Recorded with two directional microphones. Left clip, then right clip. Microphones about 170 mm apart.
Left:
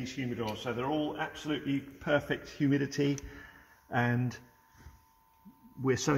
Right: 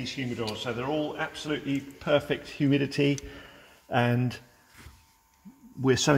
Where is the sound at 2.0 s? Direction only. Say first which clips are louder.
Right 5 dB; 25° right (ahead or behind).